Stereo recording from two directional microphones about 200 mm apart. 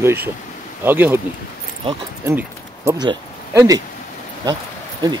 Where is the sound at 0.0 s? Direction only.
10° right (ahead or behind).